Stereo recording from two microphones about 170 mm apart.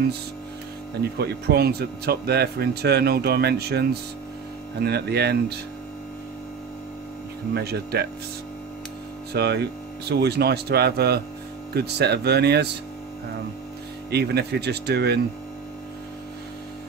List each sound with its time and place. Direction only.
1.0 s speech: 70° right (ahead or behind)
7.5 s speech: 70° right (ahead or behind)
9.3 s speech: 75° right (ahead or behind)
14.1 s speech: 75° right (ahead or behind)